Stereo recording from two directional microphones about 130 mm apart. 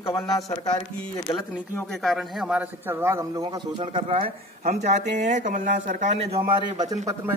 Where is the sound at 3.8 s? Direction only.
45° right (ahead or behind); by 6.3 s 65° right (ahead or behind).